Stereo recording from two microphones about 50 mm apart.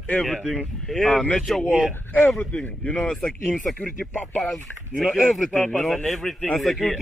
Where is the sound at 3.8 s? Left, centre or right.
Left.